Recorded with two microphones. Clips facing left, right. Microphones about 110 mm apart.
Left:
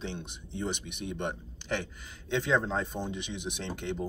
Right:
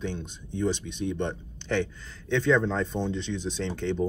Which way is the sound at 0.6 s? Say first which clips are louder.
Right 7 dB; 15° left (ahead or behind).